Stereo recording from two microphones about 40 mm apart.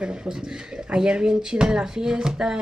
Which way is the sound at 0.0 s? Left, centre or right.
Right.